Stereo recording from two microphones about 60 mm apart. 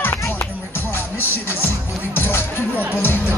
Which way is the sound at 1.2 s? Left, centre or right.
Left.